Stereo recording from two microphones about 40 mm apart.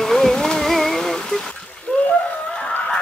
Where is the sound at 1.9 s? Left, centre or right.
Left.